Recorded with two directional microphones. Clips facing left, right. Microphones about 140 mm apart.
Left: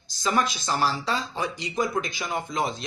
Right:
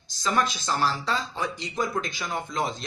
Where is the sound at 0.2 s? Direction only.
10° left (ahead or behind).